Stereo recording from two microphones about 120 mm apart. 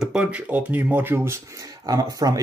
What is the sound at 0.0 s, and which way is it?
Speech, 10° right (ahead or behind).